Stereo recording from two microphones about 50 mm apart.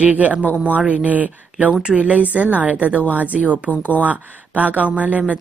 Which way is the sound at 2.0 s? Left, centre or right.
Right.